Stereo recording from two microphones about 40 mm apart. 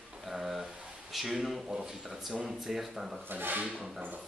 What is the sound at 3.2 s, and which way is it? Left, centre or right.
Speech, right.